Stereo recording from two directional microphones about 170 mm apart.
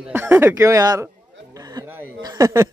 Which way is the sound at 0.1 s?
15° right (ahead or behind).